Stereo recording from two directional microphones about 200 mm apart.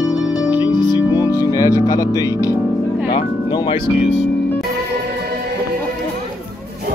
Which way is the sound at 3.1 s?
25° left (ahead or behind).